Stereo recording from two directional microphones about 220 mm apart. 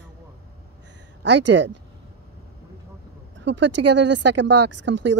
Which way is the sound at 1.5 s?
55° right (ahead or behind).